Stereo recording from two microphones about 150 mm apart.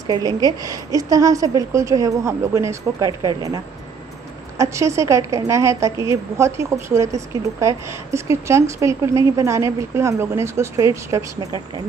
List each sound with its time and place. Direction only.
0.0 s a woman's voice: 25° right (ahead or behind)